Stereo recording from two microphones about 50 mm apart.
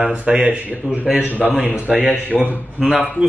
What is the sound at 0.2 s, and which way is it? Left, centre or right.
A man's voice, right.